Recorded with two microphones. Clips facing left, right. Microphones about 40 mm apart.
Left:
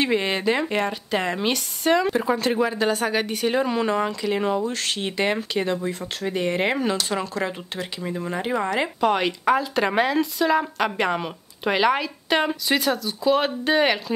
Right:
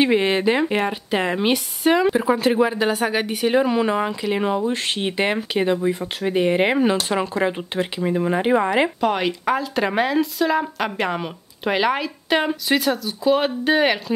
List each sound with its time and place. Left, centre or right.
0.0 s a woman's voice: centre
9.0 s speech: centre